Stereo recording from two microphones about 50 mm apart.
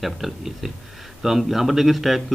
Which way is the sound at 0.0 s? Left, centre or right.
Centre.